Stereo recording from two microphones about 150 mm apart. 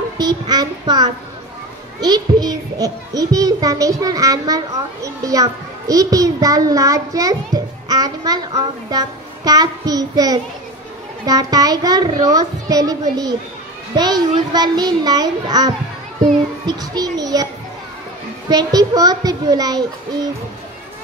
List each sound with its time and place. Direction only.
0.2 s a child's voice: 25° right (ahead or behind)
18.5 s a child's voice: 25° right (ahead or behind)